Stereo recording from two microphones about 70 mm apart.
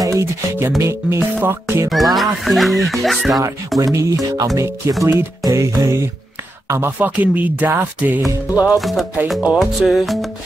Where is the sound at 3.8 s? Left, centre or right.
Right.